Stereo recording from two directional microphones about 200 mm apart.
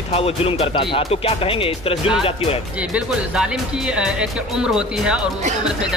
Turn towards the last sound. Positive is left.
turn(degrees=-5)  # may be behind; listen again after turning